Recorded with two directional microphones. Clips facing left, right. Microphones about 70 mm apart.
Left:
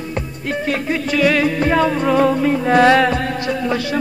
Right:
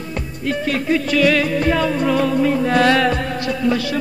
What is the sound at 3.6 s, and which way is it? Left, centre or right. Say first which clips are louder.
Speech: right 3 dB; left.